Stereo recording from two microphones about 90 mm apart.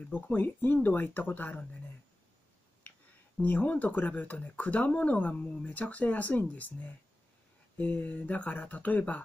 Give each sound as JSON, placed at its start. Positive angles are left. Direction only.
{"t": 0.1, "sound": "speech", "side_deg": 20}
{"t": 3.3, "sound": "speech", "side_deg": 15}